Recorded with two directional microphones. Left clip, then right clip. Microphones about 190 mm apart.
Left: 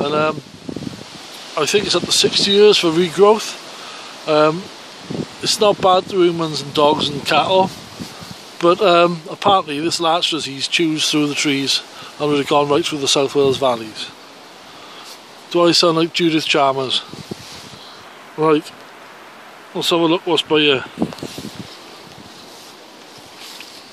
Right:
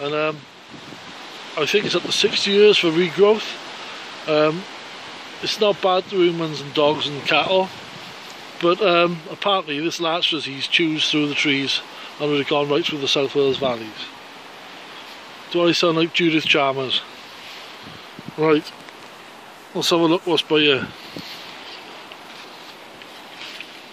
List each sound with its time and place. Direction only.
0.0 s speech: 15° left (ahead or behind)
1.5 s speech: 15° left (ahead or behind)
15.5 s speech: 15° left (ahead or behind)
18.4 s speech: 10° left (ahead or behind)
19.7 s speech: 5° left (ahead or behind)